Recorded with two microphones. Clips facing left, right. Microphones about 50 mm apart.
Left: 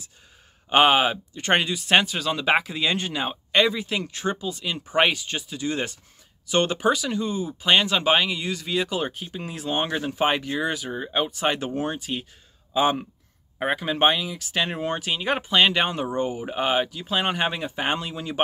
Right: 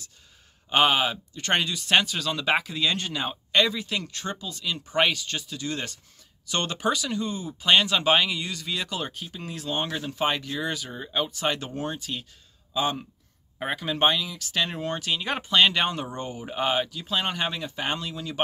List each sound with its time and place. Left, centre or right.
0.7 s speech: left